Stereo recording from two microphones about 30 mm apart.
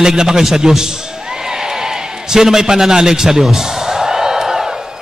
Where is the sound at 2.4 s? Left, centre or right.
Centre.